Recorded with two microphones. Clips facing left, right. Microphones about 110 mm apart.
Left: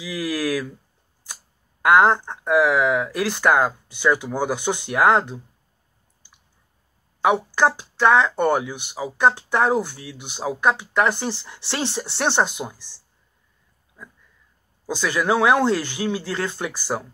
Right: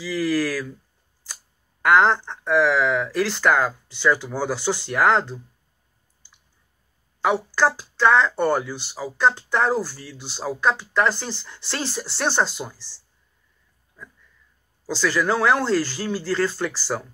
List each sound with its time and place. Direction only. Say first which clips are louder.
0.0 s speech: right 3 dB; 15° left (ahead or behind)
7.2 s speech: left 2 dB; 15° left (ahead or behind)
14.0 s a sound: even; 15° left (ahead or behind)
14.9 s speech: even; 15° left (ahead or behind)